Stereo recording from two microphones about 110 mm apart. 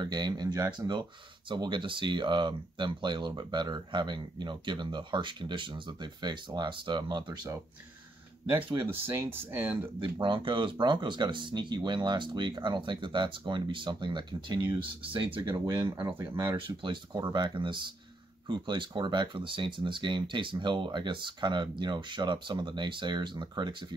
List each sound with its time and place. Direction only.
0.0 s speech: 40° right (ahead or behind)
8.5 s speech: 50° right (ahead or behind)
8.9 s speech: 20° right (ahead or behind)
10.2 s speech: 45° right (ahead or behind)
15.5 s speech: 35° right (ahead or behind)
16.5 s speech: 50° right (ahead or behind)